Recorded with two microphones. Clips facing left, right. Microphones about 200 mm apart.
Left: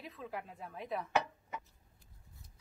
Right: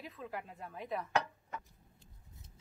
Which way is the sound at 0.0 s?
Centre (ahead or behind).